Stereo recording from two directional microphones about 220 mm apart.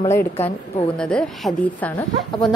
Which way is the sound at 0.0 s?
10° left (ahead or behind).